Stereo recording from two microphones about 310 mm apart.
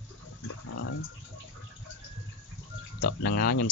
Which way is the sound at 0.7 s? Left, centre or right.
Left.